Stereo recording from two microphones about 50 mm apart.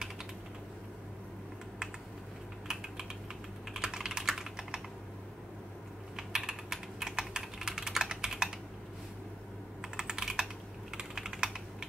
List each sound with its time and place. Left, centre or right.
2.7 s typing: centre
4.6 s computer keyboard: centre
6.1 s typing: centre
9.8 s computer keyboard: centre
10.9 s typing: centre